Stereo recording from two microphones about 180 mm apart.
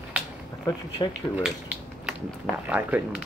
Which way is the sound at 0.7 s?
25° left (ahead or behind).